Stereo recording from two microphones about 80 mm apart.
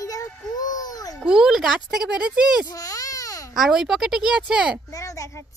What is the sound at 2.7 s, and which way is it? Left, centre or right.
Baby cry, left.